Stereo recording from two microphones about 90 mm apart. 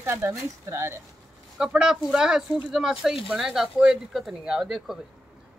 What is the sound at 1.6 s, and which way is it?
Speech, 5° right (ahead or behind).